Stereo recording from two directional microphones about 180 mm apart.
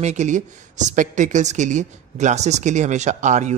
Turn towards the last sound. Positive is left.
turn(degrees=-40)  # may be behind; listen again after turning